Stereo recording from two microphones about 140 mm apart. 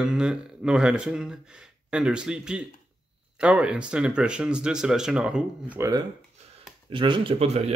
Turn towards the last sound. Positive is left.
turn(degrees=-50)  # may be behind; listen again after turning